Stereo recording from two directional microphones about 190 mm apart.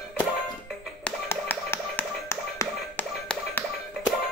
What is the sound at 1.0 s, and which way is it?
Music, 10° left (ahead or behind).